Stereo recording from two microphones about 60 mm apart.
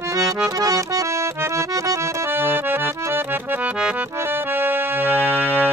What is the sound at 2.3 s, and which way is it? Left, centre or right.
Accordion, right.